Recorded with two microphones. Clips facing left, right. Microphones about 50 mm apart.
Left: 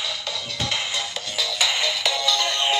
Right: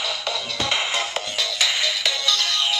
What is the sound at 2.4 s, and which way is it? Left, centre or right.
Music, left.